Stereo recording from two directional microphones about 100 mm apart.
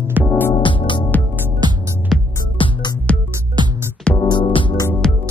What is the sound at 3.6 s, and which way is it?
Music, 45° right (ahead or behind).